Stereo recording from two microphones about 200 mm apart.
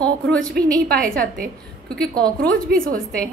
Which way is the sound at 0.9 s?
45° right (ahead or behind).